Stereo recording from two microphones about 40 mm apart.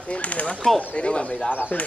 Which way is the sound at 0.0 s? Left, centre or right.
Left.